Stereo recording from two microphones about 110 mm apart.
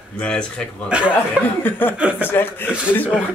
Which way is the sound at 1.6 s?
15° left (ahead or behind).